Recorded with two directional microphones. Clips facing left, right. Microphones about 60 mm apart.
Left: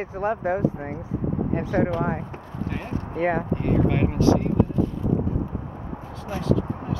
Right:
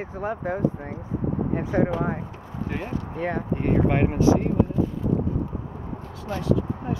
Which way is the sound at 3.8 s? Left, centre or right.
Right.